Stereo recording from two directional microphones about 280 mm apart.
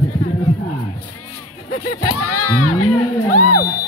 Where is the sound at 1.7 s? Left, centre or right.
Left.